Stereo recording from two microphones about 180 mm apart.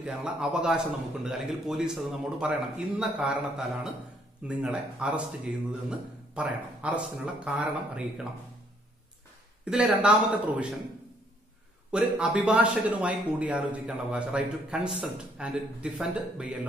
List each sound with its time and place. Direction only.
0.0 s a man's voice: 5° right (ahead or behind)
9.7 s a man's voice: 5° right (ahead or behind)
11.9 s a man's voice: 5° right (ahead or behind)